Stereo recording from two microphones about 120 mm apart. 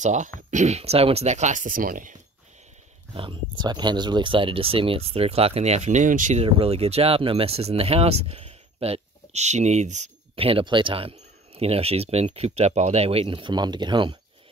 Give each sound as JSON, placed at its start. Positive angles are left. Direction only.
{"t": 0.0, "sound": "speech", "side_deg": -90}
{"t": 0.5, "sound": "speech", "side_deg": -75}
{"t": 3.2, "sound": "speech", "side_deg": -40}
{"t": 10.3, "sound": "speech", "side_deg": -50}